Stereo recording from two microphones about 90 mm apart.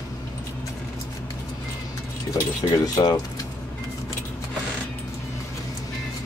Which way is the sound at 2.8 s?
45° left (ahead or behind).